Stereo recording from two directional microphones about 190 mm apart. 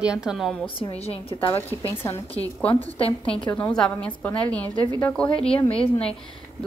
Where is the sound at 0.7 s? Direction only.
30° left (ahead or behind).